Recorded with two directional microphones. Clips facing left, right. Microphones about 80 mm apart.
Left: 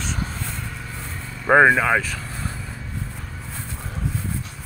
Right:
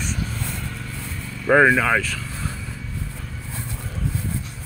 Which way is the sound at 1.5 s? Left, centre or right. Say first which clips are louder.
Left 1 dB; left.